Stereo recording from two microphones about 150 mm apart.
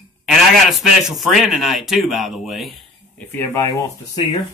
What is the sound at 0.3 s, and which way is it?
A man's voice, centre (ahead or behind).